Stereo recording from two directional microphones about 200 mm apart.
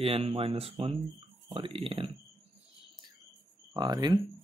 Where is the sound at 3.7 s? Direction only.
20° right (ahead or behind).